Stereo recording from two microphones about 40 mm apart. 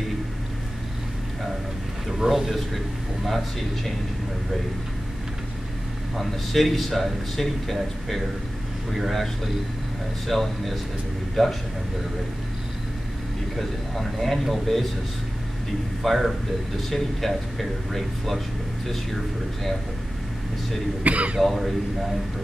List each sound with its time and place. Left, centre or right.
2.0 s speech: centre
6.1 s speech: centre
13.6 s speech: centre
16.0 s speech: centre
21.0 s speech: right
21.4 s speech: centre